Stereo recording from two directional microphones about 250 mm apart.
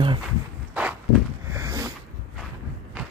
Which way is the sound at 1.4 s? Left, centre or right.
Centre.